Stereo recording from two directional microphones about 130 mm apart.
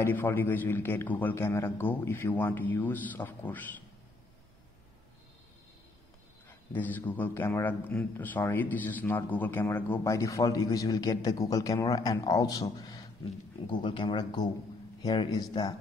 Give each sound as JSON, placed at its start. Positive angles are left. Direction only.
{"t": 0.0, "sound": "a man's voice", "side_deg": 15}
{"t": 6.7, "sound": "a man's voice", "side_deg": 15}